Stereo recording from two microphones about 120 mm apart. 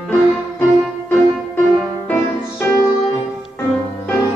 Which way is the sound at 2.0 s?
15° left (ahead or behind).